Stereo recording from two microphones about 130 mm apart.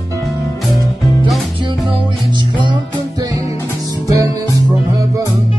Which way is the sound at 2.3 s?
35° right (ahead or behind).